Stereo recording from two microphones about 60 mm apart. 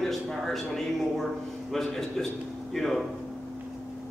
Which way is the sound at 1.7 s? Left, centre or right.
Centre.